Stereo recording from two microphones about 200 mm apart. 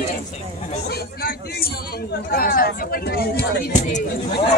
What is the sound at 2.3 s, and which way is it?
Speech, 45° left (ahead or behind).